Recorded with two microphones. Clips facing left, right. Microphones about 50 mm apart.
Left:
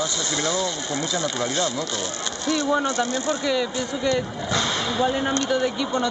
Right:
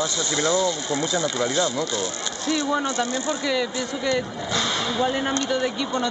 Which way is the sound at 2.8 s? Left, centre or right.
Right.